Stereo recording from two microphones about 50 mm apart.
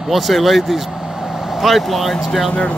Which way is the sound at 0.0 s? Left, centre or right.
Centre.